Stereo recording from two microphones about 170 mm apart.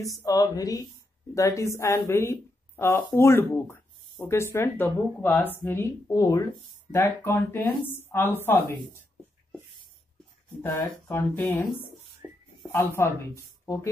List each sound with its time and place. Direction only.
0.0 s a woman's voice: 20° left (ahead or behind)
10.6 s speech: 15° left (ahead or behind)
12.2 s a sound: 20° right (ahead or behind)
12.6 s speech: 15° left (ahead or behind)